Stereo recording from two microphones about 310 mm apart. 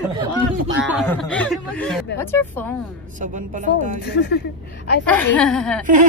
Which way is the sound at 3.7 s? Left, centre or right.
Left.